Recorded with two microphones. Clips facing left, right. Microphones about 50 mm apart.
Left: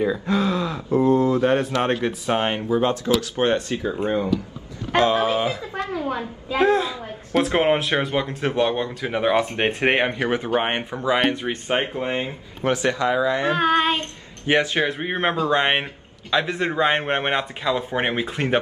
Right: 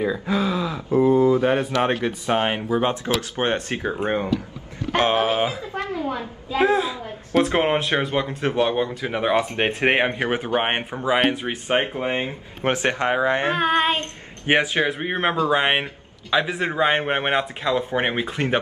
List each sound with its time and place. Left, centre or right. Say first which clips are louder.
0.0 s a sound: left 1 dB; centre
2.0 s speech: even; centre
3.2 s speech: left 2 dB; right
5.6 s a sound: even; left
6.6 s speech: even; centre
10.1 s speech: left 1 dB; right
11.0 s speech: even; centre
12.6 s speech: even; right
13.6 s speech: left 1 dB; centre
13.9 s speech: even; right
14.6 s speech: even; centre